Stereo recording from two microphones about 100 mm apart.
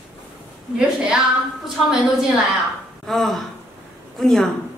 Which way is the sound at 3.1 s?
Centre (ahead or behind).